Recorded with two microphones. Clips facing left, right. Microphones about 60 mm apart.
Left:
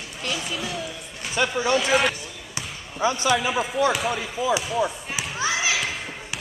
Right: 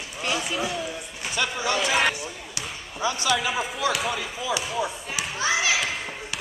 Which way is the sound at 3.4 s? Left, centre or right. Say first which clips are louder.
Left 4 dB; centre.